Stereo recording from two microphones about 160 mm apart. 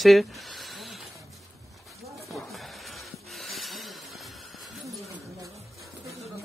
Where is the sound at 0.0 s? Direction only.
Centre (ahead or behind).